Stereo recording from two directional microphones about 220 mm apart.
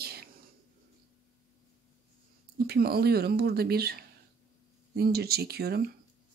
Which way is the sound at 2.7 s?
45° right (ahead or behind).